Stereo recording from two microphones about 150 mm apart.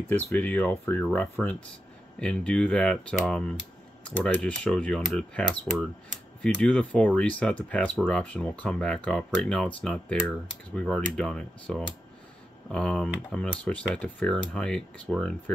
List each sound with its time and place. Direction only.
0.1 s speech: 10° left (ahead or behind)